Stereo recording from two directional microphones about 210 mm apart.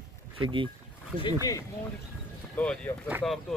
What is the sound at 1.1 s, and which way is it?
Speech, 40° right (ahead or behind).